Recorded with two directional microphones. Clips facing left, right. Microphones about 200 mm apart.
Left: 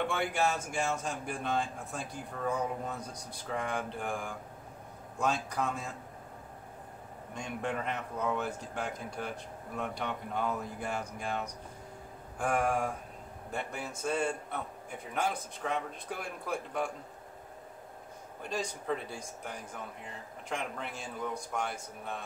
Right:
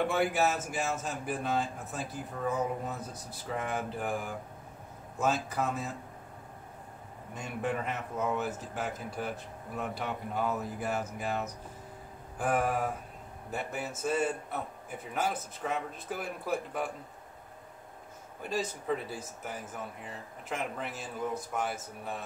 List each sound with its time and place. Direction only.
0.0 s a man's voice: 5° right (ahead or behind)
7.3 s a man's voice: 5° right (ahead or behind)
18.4 s a man's voice: 5° right (ahead or behind)